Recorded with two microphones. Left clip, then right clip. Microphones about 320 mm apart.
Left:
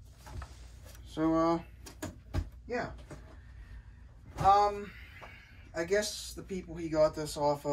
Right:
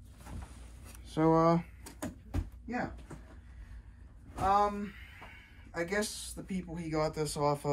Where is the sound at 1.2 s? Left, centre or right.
Centre.